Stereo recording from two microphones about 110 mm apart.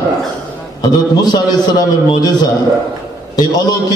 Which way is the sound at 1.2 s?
35° left (ahead or behind).